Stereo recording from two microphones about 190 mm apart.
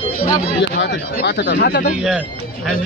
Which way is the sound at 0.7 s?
65° left (ahead or behind).